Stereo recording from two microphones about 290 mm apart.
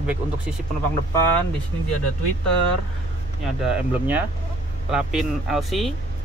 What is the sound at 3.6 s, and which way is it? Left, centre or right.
Speech, centre.